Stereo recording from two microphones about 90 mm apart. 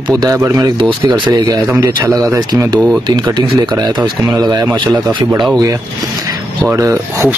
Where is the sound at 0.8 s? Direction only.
55° right (ahead or behind); by 2.6 s 40° right (ahead or behind).